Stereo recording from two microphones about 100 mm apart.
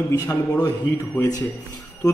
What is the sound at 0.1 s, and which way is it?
Mantra, 30° left (ahead or behind).